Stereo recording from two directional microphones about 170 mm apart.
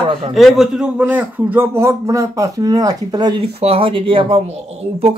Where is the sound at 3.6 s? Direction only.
35° right (ahead or behind).